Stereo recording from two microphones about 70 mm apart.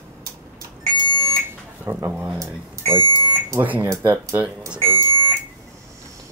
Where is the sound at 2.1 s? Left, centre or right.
Right.